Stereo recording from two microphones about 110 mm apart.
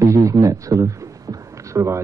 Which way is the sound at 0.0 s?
30° right (ahead or behind).